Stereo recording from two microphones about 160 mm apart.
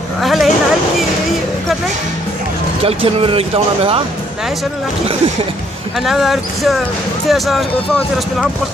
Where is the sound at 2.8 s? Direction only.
35° right (ahead or behind).